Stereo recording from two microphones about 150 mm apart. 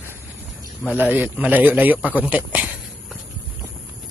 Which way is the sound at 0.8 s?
10° right (ahead or behind).